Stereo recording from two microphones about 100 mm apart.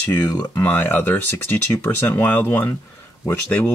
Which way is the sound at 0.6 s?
20° left (ahead or behind).